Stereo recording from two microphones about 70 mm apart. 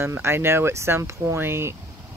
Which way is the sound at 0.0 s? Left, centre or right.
Right.